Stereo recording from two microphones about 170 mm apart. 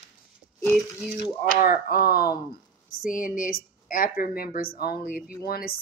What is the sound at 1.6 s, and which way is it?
Speech, 55° left (ahead or behind).